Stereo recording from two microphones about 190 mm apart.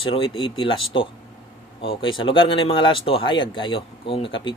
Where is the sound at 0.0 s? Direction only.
30° left (ahead or behind).